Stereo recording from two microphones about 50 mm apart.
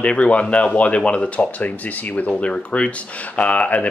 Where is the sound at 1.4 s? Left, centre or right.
Left.